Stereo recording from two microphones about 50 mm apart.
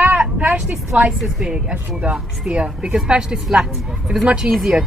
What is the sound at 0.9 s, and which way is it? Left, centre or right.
A woman's voice, right.